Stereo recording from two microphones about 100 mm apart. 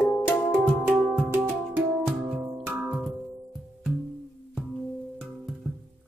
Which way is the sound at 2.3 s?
15° right (ahead or behind).